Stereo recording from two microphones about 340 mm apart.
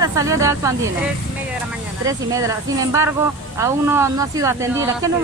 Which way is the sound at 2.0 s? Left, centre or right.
Centre.